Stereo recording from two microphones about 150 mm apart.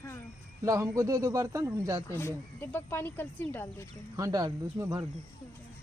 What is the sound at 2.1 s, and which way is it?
Speech, 15° left (ahead or behind).